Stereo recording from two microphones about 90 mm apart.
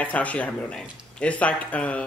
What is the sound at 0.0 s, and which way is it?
Speech, 15° left (ahead or behind).